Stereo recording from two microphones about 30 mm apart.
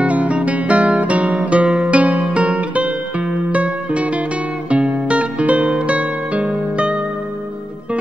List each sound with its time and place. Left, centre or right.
0.0 s guitar: right
2.3 s music: right